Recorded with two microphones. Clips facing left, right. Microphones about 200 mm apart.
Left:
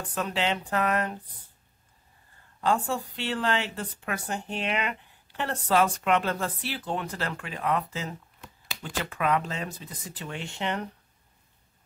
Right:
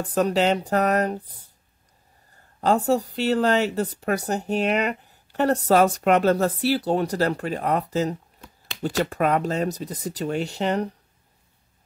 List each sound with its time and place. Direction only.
0.1 s a woman's voice: 40° right (ahead or behind)
2.6 s a woman's voice: 40° right (ahead or behind)